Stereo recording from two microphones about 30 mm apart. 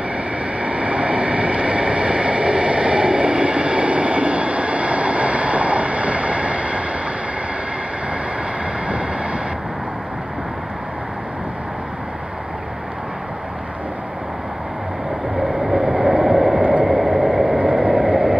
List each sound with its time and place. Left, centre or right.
0.6 s vehicle: right
8.8 s vehicle: right
15.6 s vehicle: centre
16.8 s a sound: centre
17.5 s vehicle: right
17.9 s vehicle: centre